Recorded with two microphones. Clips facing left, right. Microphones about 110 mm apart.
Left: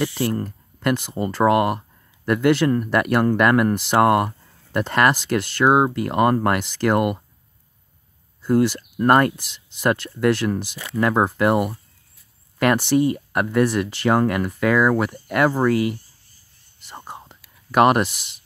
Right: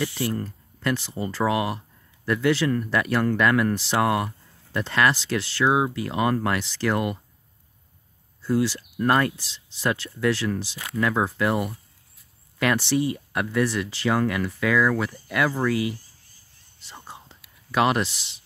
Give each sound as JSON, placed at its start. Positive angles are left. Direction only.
{"t": 0.0, "sound": "speech", "side_deg": 50}
{"t": 8.4, "sound": "speech", "side_deg": 55}
{"t": 16.8, "sound": "whispering", "side_deg": 50}